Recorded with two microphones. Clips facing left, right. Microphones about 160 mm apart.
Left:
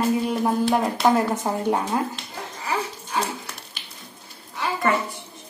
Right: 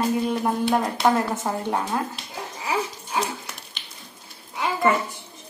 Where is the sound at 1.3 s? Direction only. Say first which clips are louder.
Left 3 dB; 15° left (ahead or behind).